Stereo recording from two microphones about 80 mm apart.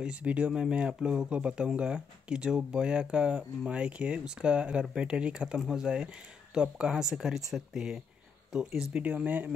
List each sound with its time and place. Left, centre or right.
0.0 s speech: centre
8.9 s speech: centre